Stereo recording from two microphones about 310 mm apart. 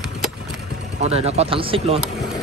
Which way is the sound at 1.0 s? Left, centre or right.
Centre.